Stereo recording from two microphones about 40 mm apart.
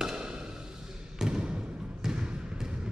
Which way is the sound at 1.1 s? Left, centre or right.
Centre.